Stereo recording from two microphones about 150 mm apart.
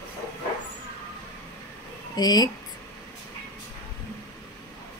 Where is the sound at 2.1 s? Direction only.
25° left (ahead or behind).